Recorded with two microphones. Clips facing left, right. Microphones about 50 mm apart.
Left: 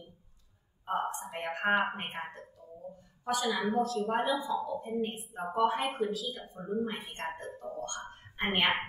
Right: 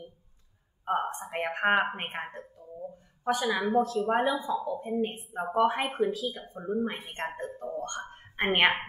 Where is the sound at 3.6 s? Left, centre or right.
Right.